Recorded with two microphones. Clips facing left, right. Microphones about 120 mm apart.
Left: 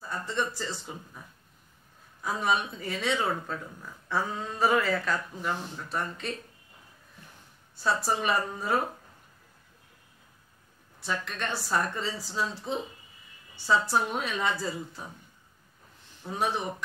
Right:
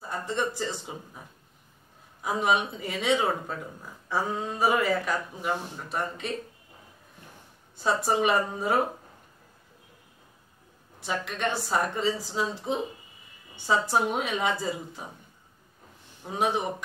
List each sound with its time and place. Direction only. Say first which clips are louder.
0.3 s speech: right 3 dB; 20° right (ahead or behind)
2.2 s speech: right 3 dB; 15° right (ahead or behind)
7.7 s speech: right 3 dB; 20° right (ahead or behind)
11.0 s speech: right 3 dB; 15° right (ahead or behind)
16.3 s speech: right 3 dB; 15° right (ahead or behind)